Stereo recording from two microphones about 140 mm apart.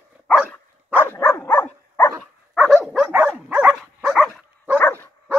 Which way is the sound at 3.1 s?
10° right (ahead or behind).